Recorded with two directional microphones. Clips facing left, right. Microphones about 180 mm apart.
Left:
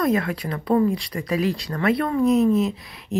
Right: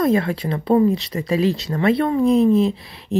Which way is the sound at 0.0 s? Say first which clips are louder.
Right 3 dB; 25° right (ahead or behind).